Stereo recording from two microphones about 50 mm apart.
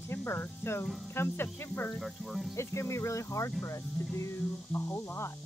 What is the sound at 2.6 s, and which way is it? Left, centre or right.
Speech, left.